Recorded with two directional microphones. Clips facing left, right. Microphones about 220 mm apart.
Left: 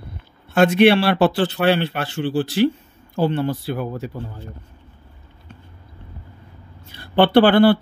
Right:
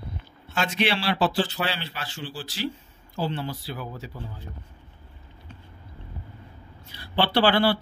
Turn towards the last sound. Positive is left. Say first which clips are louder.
# left 9 dB
turn(degrees=50)  # may be behind; listen again after turning